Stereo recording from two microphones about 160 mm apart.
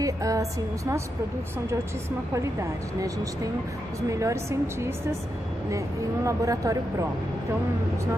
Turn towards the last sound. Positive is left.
turn(degrees=-20)  # may be behind; listen again after turning